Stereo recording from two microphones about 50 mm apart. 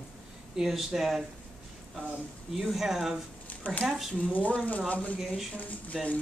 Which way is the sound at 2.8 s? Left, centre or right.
Centre.